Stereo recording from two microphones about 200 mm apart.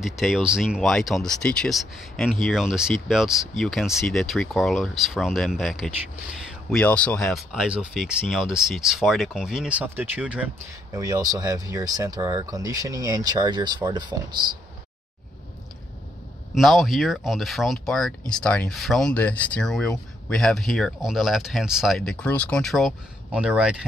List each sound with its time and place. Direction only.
0.0 s speech: centre (ahead or behind)
10.9 s speech: 20° right (ahead or behind)
16.5 s speech: centre (ahead or behind)